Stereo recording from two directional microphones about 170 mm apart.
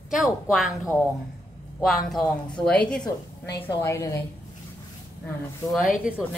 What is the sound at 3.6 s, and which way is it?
Speech, 15° left (ahead or behind).